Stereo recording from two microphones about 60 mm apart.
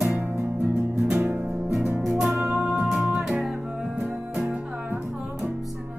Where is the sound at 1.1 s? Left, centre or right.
Right.